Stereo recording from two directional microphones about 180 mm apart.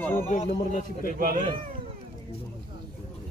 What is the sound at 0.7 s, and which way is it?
Speech, 45° left (ahead or behind).